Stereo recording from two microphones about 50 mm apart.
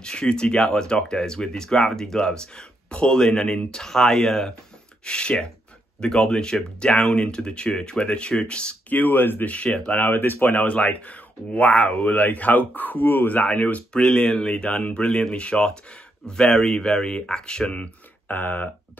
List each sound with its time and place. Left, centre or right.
0.0 s speech: centre
8.8 s speech: left
10.7 s speech: left
13.9 s speech: centre
18.3 s speech: left